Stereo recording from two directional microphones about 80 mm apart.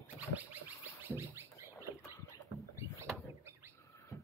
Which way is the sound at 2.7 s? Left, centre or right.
Right.